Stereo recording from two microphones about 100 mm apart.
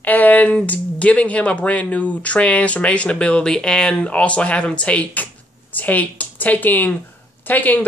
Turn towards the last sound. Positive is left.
turn(degrees=20)  # may be behind; listen again after turning